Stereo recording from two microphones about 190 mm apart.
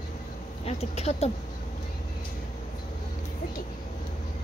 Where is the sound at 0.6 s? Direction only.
35° left (ahead or behind).